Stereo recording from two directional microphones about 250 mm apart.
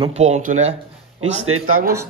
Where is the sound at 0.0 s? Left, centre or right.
Right.